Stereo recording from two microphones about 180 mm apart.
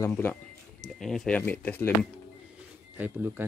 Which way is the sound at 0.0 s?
10° left (ahead or behind).